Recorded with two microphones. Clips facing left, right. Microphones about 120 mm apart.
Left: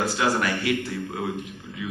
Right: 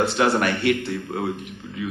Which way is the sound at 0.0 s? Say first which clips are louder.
Right 4 dB; 70° right (ahead or behind).